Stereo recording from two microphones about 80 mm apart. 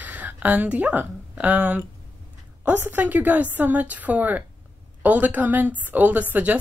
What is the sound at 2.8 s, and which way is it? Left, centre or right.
A woman's voice, right.